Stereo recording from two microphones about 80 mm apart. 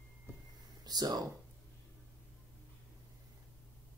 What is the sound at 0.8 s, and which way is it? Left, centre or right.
Speech, right.